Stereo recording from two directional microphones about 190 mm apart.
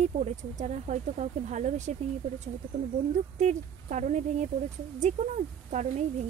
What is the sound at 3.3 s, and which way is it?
Speech, 40° right (ahead or behind).